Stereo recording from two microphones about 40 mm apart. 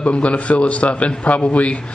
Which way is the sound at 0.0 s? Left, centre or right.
Left.